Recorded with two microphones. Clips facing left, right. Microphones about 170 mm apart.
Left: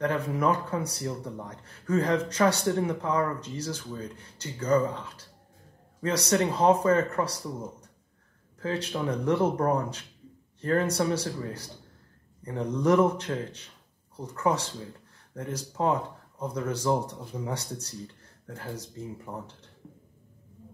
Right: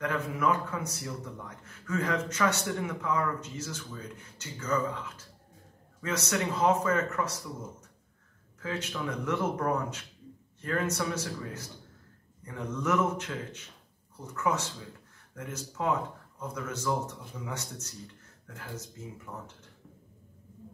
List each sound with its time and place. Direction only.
0.0 s speech: 35° left (ahead or behind)
8.5 s speech: 35° left (ahead or behind)